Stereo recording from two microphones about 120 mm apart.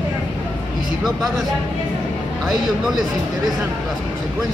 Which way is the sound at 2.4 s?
Centre (ahead or behind).